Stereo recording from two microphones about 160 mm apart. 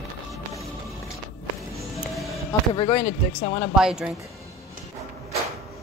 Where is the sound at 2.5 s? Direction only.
35° left (ahead or behind).